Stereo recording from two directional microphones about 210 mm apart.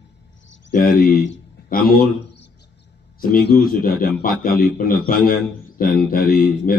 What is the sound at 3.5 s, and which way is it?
A man's voice, 45° left (ahead or behind).